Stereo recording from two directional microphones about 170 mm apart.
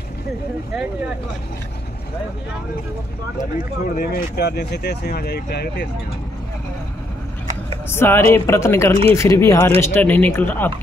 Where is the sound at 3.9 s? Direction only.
70° left (ahead or behind).